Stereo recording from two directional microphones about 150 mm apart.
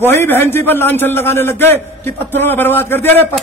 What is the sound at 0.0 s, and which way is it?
A man's voice, 15° left (ahead or behind).